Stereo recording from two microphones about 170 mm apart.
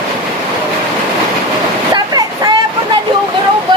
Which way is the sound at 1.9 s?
25° right (ahead or behind).